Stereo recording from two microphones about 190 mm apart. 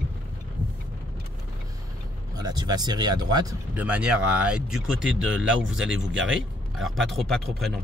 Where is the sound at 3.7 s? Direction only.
5° right (ahead or behind).